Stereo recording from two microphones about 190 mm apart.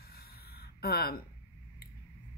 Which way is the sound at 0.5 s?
55° left (ahead or behind).